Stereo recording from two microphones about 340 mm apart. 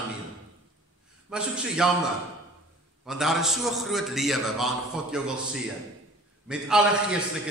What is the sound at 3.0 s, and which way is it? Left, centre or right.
A man's voice, centre.